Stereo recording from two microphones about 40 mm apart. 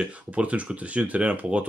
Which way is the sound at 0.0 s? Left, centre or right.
Right.